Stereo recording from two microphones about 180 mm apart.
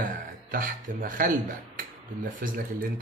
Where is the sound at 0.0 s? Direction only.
50° right (ahead or behind).